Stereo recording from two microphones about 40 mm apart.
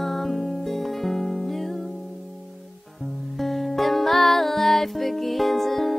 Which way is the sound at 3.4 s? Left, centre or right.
Centre.